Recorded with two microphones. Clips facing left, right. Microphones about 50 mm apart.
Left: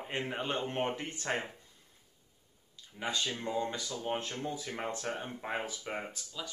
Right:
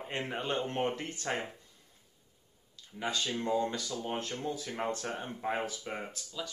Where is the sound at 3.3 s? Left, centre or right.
Centre.